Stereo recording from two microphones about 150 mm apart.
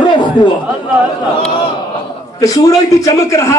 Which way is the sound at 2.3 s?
25° left (ahead or behind).